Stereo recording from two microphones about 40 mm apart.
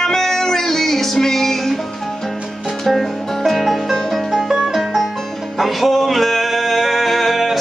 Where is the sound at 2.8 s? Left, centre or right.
Centre.